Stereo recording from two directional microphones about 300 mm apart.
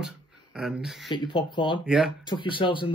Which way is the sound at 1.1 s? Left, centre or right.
Centre.